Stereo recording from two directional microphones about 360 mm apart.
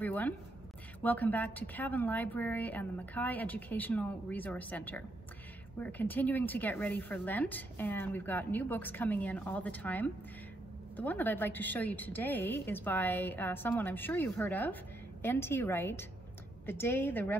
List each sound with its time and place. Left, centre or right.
0.0 s a woman's voice: centre